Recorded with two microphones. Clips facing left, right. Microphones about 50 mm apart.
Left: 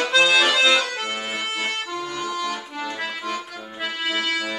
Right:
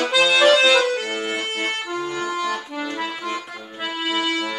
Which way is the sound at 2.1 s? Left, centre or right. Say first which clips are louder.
Right 1 dB; right.